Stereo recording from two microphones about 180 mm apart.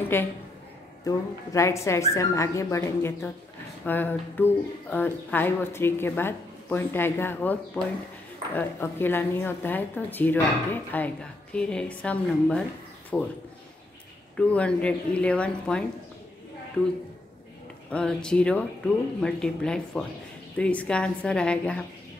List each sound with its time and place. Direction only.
0.1 s a woman's voice: 10° left (ahead or behind)
14.3 s speech: 5° left (ahead or behind)
17.9 s a woman's voice: 5° left (ahead or behind)